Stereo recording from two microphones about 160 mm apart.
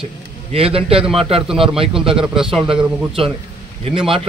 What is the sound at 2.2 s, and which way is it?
Speech, 5° right (ahead or behind).